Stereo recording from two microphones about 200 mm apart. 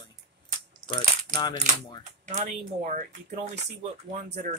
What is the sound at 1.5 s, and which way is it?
Speech, 40° right (ahead or behind).